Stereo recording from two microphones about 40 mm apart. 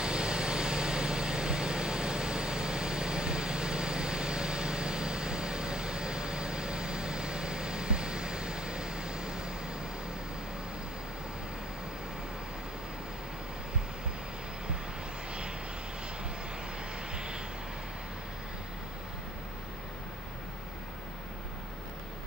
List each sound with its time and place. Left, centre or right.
0.0 s vehicle: right
17.1 s vehicle: right